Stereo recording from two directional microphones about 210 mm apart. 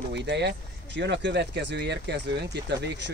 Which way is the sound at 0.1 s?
55° right (ahead or behind).